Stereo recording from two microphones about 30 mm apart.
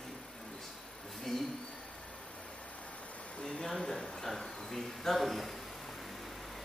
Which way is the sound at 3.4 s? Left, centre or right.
Left.